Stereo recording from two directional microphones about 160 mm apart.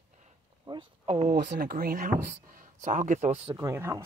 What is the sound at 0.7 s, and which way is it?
Speech, 30° right (ahead or behind).